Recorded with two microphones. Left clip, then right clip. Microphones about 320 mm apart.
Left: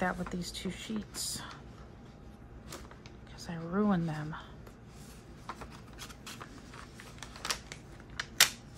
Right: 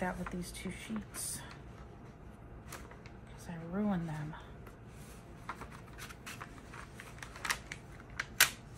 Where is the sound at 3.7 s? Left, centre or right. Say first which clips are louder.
Left 6 dB; left.